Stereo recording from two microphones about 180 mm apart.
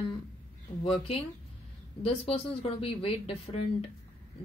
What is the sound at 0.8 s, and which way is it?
Speech, 30° left (ahead or behind).